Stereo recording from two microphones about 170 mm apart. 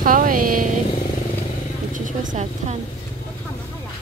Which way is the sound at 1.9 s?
50° right (ahead or behind).